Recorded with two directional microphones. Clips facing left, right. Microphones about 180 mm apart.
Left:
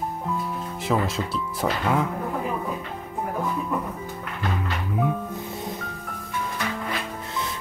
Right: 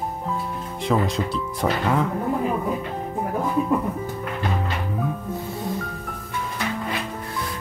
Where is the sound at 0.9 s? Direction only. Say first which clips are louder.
Right 2 dB; centre (ahead or behind).